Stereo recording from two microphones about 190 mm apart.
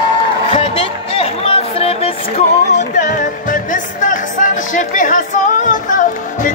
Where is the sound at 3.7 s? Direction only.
45° left (ahead or behind).